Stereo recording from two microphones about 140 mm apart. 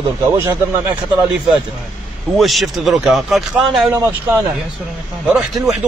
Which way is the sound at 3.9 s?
20° right (ahead or behind).